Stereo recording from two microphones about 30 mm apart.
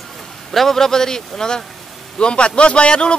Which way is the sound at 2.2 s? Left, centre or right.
Left.